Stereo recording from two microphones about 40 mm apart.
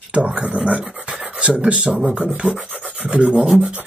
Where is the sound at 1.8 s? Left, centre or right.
Centre.